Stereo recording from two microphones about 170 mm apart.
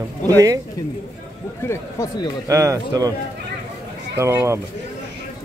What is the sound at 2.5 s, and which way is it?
Speech, 20° right (ahead or behind).